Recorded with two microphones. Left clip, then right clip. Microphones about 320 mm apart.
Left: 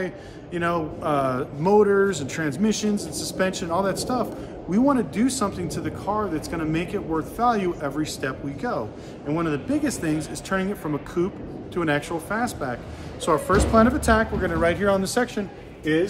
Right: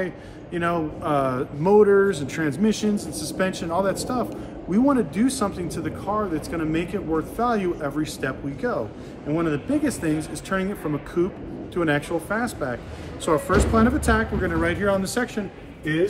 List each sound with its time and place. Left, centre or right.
0.0 s a man's voice: centre